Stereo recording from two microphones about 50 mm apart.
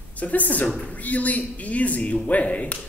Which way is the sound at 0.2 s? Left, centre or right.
Left.